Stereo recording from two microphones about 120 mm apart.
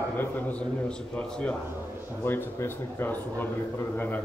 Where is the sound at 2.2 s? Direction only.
20° left (ahead or behind).